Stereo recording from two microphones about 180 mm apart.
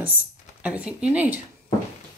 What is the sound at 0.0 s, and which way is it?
Speech, 10° right (ahead or behind).